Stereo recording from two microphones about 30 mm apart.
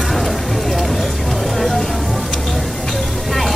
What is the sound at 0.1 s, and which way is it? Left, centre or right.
Vehicle, centre.